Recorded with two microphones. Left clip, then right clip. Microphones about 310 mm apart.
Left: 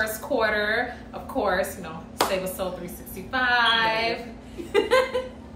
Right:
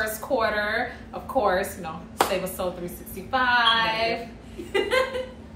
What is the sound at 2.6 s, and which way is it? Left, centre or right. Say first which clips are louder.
A woman's voice: right 1 dB; centre.